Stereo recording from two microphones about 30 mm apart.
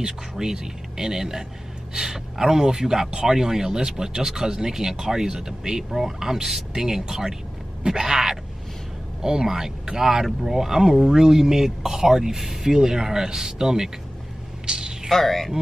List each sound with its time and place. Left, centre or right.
0.0 s speech: right
5.9 s speech: centre
6.1 s speech: centre
14.7 s a sound: right
15.0 s speech: centre